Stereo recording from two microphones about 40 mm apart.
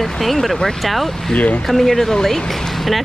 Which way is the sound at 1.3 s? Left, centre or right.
Left.